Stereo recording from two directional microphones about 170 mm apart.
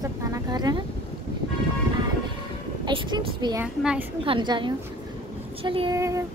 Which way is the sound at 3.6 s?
5° right (ahead or behind).